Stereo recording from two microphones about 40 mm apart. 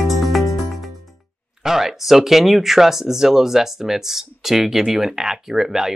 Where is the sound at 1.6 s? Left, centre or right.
Centre.